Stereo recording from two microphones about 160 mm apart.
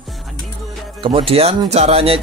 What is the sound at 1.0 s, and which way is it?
Speech, 35° right (ahead or behind).